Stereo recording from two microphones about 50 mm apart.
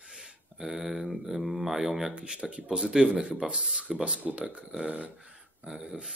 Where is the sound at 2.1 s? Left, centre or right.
Right.